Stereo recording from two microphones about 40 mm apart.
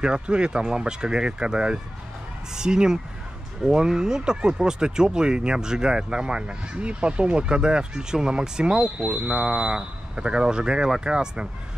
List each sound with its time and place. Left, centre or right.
0.0 s speech: right
9.4 s speech: centre